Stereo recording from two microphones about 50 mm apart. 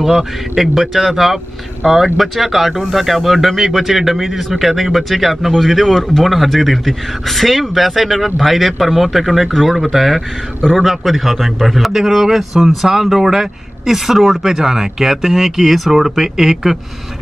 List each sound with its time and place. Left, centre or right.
0.0 s a man's voice: centre